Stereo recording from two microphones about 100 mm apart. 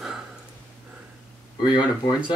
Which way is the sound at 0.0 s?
5° right (ahead or behind).